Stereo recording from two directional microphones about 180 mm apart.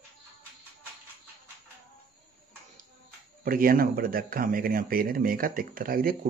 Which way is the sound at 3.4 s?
50° right (ahead or behind).